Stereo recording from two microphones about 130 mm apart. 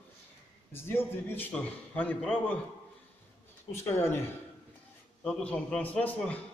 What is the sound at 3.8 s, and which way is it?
Speech, 20° left (ahead or behind).